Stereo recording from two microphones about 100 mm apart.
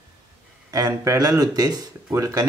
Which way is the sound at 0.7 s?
35° right (ahead or behind).